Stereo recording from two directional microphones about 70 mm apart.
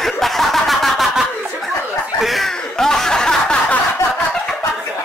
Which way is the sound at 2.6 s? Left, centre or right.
Centre.